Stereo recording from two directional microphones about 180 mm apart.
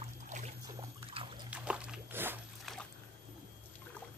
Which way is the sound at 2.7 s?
Centre (ahead or behind).